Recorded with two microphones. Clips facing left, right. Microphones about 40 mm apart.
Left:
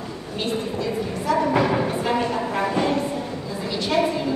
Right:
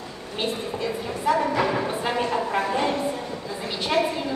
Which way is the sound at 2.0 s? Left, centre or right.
Centre.